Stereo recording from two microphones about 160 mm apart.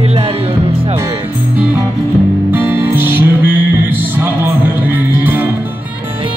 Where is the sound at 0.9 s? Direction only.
15° right (ahead or behind).